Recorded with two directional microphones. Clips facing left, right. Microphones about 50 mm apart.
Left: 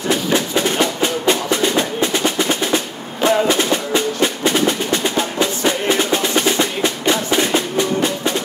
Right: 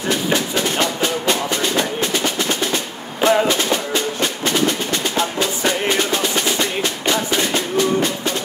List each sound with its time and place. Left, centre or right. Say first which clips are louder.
0.1 s music: left 2 dB; centre
3.2 s music: even; centre
3.7 s music: left 2 dB; centre